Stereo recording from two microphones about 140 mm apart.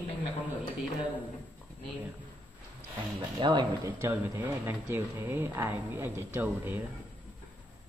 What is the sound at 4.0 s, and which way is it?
Speech, 15° right (ahead or behind).